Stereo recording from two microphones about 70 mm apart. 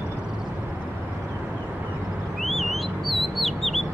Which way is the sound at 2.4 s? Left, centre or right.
Centre.